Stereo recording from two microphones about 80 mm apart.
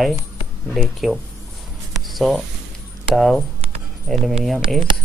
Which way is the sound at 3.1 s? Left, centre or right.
Centre.